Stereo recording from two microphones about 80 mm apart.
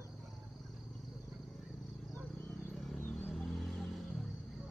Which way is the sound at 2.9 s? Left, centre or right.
Centre.